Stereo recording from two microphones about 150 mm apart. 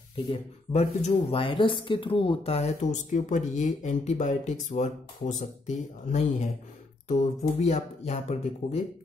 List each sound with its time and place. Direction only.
0.3 s speech: 40° left (ahead or behind)